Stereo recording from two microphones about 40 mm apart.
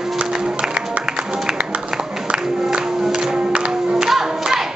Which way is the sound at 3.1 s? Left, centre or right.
Centre.